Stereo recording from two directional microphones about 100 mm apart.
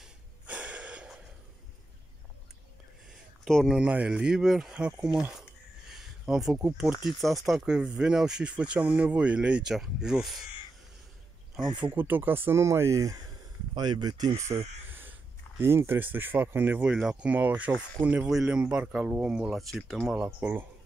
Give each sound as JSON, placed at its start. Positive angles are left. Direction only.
{"t": 0.0, "sound": "snort", "side_deg": -15}
{"t": 3.4, "sound": "speech", "side_deg": 5}
{"t": 3.7, "sound": "speech", "side_deg": -10}
{"t": 11.5, "sound": "speech", "side_deg": -10}
{"t": 13.7, "sound": "speech", "side_deg": -45}
{"t": 14.9, "sound": "speech", "side_deg": -20}
{"t": 20.3, "sound": "speech", "side_deg": -20}